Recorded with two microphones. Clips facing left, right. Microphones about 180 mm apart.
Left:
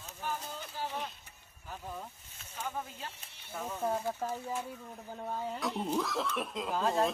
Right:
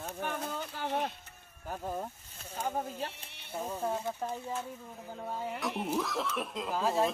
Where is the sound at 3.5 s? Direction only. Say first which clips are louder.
Right 3 dB; 15° right (ahead or behind).